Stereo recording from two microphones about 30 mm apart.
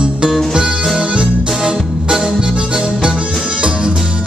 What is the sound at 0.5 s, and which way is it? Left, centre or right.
Music, right.